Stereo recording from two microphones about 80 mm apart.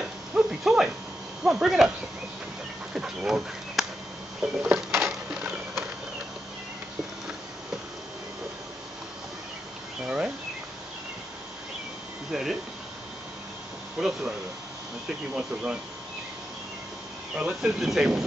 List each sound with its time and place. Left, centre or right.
0.0 s a sound: centre
1.4 s speech: centre
2.9 s speech: centre
4.7 s patter: right
5.3 s a sound: centre
10.0 s insect: centre
12.3 s speech: centre
13.9 s speech: centre
15.3 s speech: centre
17.4 s speech: centre